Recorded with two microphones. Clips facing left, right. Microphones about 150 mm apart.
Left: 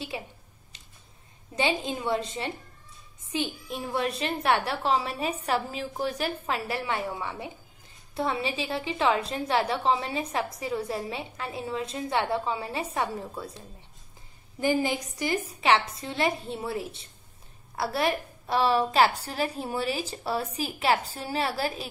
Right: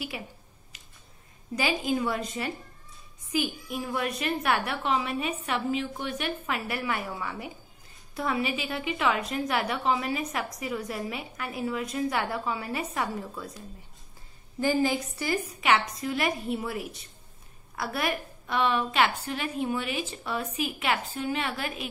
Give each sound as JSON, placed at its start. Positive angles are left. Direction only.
{"t": 0.1, "sound": "a woman's voice", "side_deg": 25}
{"t": 1.5, "sound": "a woman's voice", "side_deg": 25}
{"t": 14.6, "sound": "a woman's voice", "side_deg": 15}